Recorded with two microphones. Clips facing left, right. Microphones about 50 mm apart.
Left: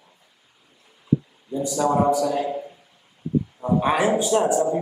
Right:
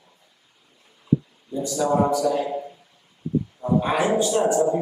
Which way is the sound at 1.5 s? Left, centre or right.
Centre.